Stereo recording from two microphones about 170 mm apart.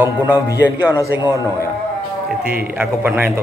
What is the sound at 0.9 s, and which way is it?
Speech, 20° left (ahead or behind).